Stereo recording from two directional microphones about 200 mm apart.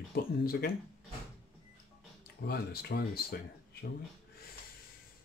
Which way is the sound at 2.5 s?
55° left (ahead or behind).